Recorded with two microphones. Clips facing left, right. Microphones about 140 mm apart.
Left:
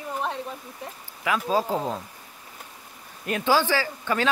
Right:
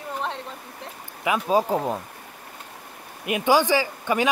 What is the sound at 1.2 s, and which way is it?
Speech, 20° right (ahead or behind).